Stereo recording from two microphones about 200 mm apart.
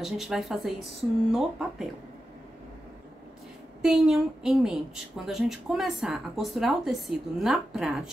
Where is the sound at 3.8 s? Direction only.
5° right (ahead or behind).